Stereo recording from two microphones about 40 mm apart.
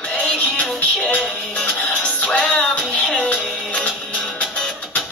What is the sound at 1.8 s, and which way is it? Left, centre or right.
Music, left.